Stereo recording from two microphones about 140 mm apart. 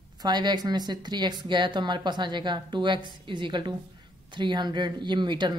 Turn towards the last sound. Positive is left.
turn(degrees=-35)  # may be behind; listen again after turning